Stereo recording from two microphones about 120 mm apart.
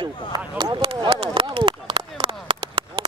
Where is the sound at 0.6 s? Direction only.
35° right (ahead or behind).